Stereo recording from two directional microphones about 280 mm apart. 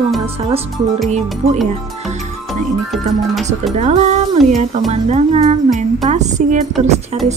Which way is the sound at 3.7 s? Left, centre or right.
Right.